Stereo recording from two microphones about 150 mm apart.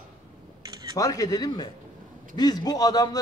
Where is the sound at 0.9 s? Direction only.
25° left (ahead or behind).